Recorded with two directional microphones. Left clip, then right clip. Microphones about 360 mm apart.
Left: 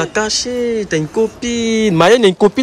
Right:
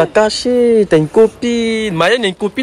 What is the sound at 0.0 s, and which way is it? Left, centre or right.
Speech, centre.